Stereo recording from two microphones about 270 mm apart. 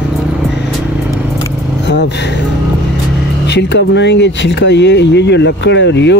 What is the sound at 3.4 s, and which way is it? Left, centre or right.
Speech, left.